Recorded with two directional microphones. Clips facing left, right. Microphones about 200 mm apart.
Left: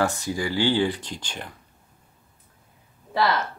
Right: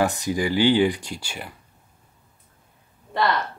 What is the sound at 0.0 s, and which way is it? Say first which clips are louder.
Speech: right 2 dB; 15° right (ahead or behind).